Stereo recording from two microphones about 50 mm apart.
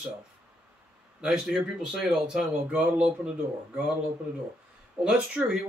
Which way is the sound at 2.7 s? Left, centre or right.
Right.